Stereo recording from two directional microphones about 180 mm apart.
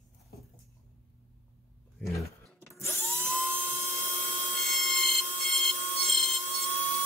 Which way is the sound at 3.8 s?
10° left (ahead or behind).